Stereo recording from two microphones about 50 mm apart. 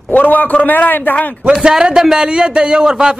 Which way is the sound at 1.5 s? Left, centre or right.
Centre.